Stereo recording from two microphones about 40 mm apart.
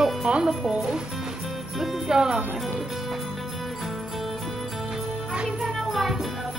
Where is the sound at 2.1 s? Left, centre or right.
Centre.